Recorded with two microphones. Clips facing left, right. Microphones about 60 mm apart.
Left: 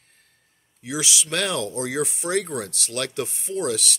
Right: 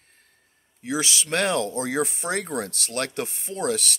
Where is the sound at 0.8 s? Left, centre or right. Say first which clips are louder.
Right 1 dB; right.